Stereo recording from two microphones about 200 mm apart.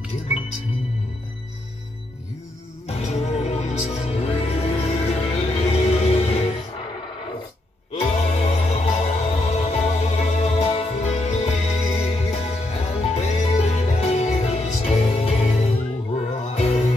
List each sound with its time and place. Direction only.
2.9 s music: 30° left (ahead or behind)
7.9 s music: 30° left (ahead or behind)